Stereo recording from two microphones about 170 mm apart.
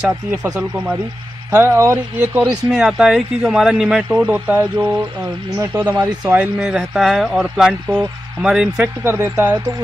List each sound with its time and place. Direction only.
1.5 s speech: 15° right (ahead or behind)
2.4 s speech: centre (ahead or behind)
5.6 s speech: 20° right (ahead or behind)
6.2 s speech: 10° right (ahead or behind)